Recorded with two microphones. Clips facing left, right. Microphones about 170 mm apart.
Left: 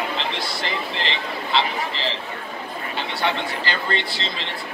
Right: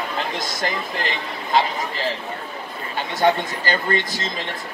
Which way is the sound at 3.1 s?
45° right (ahead or behind).